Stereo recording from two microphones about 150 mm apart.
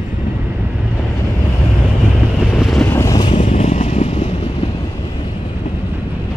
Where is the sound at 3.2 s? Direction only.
50° left (ahead or behind).